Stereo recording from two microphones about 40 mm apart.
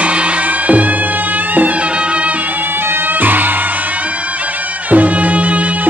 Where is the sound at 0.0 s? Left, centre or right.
Right.